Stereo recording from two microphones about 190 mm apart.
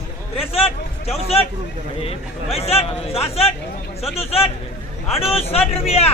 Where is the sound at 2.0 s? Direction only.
30° left (ahead or behind).